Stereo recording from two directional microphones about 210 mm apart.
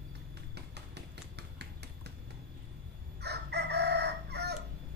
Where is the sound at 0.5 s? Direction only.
55° right (ahead or behind).